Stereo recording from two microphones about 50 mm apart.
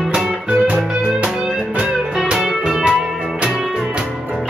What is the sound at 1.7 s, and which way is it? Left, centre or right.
Music, centre.